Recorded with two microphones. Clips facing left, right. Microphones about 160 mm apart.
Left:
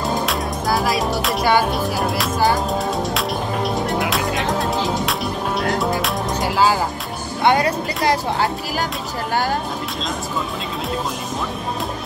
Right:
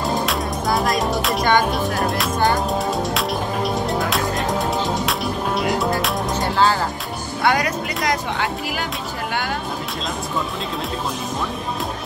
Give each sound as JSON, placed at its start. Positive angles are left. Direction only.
{"t": 0.0, "sound": "music", "side_deg": 0}
{"t": 7.4, "sound": "speech", "side_deg": 30}